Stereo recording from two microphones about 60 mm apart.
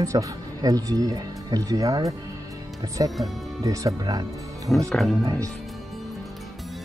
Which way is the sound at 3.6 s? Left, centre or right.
Right.